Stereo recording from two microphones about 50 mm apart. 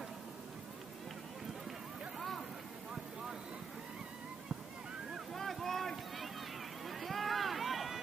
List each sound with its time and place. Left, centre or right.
2.1 s vehicle: centre
5.3 s vehicle: centre
6.9 s run: centre